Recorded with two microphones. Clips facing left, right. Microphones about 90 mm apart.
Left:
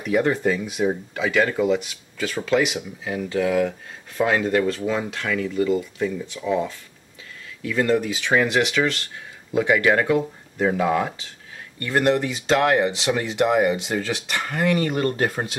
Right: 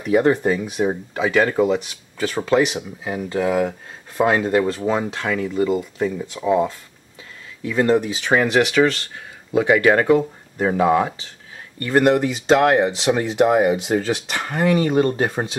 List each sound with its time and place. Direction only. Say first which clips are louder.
0.5 s speech: right 2 dB; 35° right (ahead or behind)
11.8 s speech: right 4 dB; 40° right (ahead or behind)
12.5 s speech: right 2 dB; 30° right (ahead or behind)